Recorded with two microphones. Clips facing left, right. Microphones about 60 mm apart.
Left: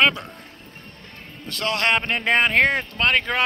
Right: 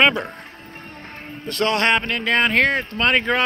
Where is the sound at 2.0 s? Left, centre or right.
Centre.